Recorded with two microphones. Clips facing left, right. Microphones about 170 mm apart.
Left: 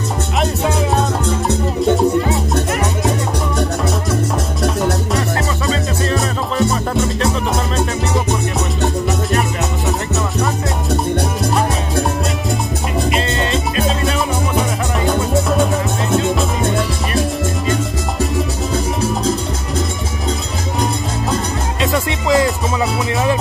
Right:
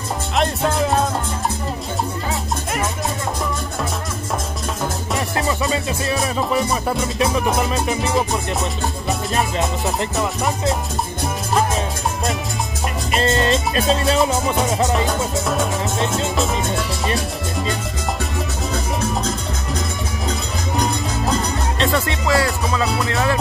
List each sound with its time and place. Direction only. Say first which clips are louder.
0.4 s music: left 1 dB; centre (ahead or behind)
6.0 s music: even; 5° right (ahead or behind)
9.8 s music: left 1 dB; centre (ahead or behind)
13.2 s music: right 1 dB; 40° right (ahead or behind)
20.8 s music: left 2 dB; centre (ahead or behind)
22.3 s music: left 4 dB; 20° left (ahead or behind)